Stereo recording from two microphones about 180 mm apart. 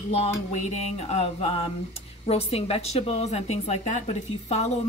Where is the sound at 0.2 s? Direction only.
35° left (ahead or behind).